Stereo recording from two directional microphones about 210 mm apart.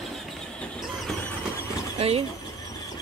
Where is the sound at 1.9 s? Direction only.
30° right (ahead or behind).